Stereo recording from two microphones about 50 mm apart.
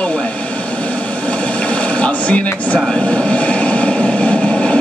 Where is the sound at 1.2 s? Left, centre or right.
Left.